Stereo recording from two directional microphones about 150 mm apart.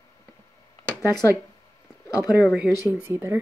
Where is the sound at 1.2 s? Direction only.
20° left (ahead or behind).